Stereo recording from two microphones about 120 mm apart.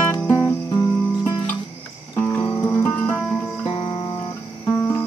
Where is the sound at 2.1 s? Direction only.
20° left (ahead or behind).